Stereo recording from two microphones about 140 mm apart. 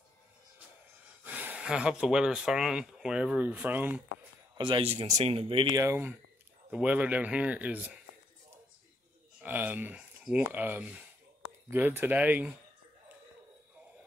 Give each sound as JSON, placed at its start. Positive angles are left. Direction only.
{"t": 1.2, "sound": "speech", "side_deg": -10}
{"t": 4.6, "sound": "speech", "side_deg": -35}
{"t": 5.8, "sound": "speech", "side_deg": -15}
{"t": 9.4, "sound": "speech", "side_deg": -10}